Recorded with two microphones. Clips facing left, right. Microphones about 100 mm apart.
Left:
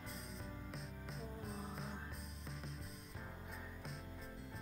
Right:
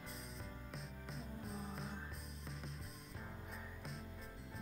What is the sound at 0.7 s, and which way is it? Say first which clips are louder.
Music: even; centre (ahead or behind).